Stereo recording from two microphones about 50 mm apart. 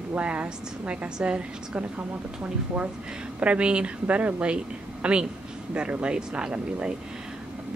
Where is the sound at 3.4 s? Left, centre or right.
Right.